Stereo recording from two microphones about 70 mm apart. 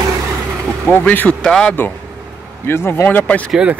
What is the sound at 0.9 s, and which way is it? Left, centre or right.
Speech, left.